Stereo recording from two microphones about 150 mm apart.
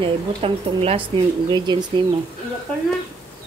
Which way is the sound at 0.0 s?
40° right (ahead or behind).